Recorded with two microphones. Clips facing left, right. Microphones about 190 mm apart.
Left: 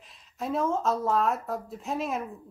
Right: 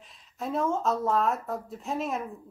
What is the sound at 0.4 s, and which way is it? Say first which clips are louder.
Speech: left 1 dB; centre (ahead or behind).